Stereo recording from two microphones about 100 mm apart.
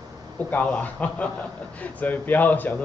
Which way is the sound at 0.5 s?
15° left (ahead or behind).